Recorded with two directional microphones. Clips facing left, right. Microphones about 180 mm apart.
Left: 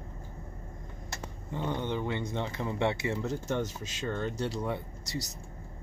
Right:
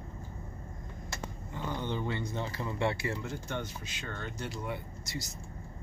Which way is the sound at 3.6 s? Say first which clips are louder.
Left 6 dB; 40° left (ahead or behind).